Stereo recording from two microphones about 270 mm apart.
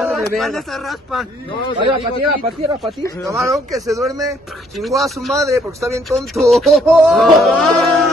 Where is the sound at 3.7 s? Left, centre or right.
Centre.